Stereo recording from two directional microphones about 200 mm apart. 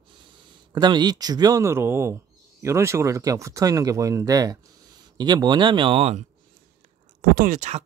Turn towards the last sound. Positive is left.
turn(degrees=-40)  # may be behind; listen again after turning